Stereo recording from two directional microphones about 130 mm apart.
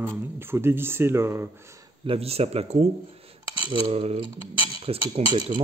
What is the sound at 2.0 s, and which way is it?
Speech, 50° right (ahead or behind).